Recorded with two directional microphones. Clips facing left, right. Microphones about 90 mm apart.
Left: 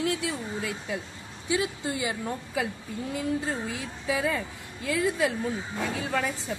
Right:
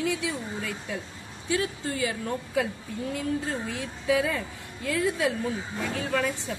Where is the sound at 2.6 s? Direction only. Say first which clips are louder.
Right 3 dB; 5° left (ahead or behind).